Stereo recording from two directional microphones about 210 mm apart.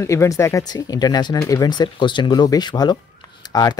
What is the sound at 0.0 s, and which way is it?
Speech, 15° left (ahead or behind).